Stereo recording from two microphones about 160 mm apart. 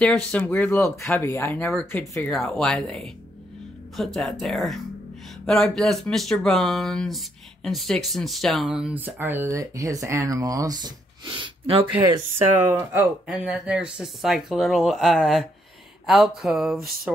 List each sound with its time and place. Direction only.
0.0 s speech: 10° left (ahead or behind)
2.3 s speech: centre (ahead or behind); by 12.4 s 30° right (ahead or behind)
13.3 s speech: 5° right (ahead or behind)